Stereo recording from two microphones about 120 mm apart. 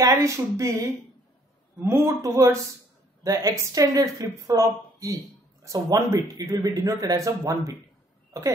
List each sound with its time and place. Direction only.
0.0 s a man's voice: 25° right (ahead or behind)